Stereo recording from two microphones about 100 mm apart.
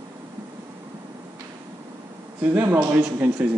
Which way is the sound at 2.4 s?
20° right (ahead or behind).